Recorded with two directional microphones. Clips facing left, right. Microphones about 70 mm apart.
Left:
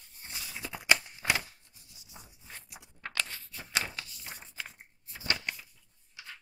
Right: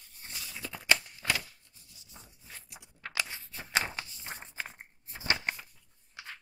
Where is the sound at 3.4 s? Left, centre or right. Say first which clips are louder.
Right 3 dB; right.